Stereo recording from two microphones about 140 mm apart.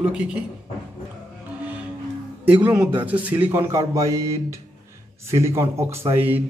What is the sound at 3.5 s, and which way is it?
A man's voice, 20° right (ahead or behind).